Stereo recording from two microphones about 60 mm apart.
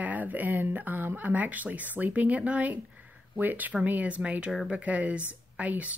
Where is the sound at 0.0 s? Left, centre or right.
Right.